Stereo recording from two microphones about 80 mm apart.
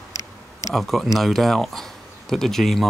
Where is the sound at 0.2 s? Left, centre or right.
Left.